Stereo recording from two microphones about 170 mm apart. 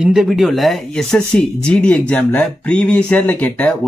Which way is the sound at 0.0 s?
5° right (ahead or behind).